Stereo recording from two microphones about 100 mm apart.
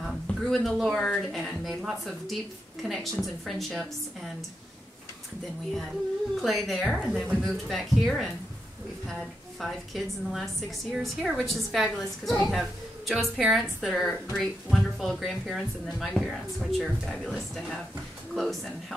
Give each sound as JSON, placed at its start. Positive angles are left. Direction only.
{"t": 0.0, "sound": "speech", "side_deg": 0}
{"t": 6.4, "sound": "speech", "side_deg": 0}
{"t": 9.6, "sound": "speech", "side_deg": 0}